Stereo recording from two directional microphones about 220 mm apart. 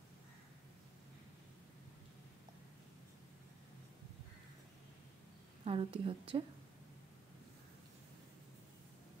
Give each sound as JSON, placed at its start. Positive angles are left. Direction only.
{"t": 5.7, "sound": "a woman's voice", "side_deg": -25}